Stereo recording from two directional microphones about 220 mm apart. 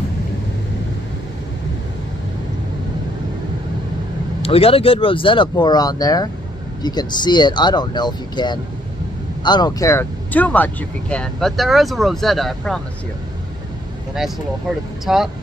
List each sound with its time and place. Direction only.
4.4 s speech: 25° left (ahead or behind); by 12.8 s centre (ahead or behind)
15.1 s speech: 5° right (ahead or behind)